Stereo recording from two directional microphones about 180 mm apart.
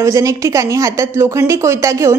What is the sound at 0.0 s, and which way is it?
Speech, 15° right (ahead or behind).